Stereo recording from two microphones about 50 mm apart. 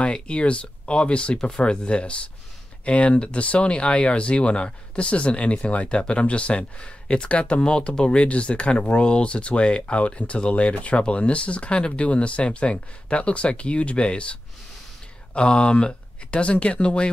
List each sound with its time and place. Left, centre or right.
0.0 s speech: left